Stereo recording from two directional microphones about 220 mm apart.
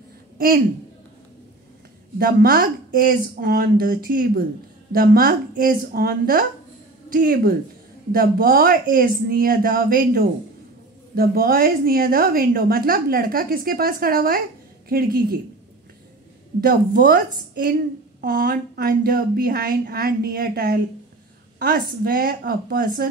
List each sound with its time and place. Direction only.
2.1 s a woman's voice: 45° right (ahead or behind)
16.6 s a woman's voice: 45° right (ahead or behind)